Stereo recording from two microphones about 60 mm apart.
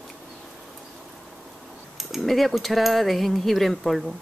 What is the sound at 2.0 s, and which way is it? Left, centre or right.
Speech, centre.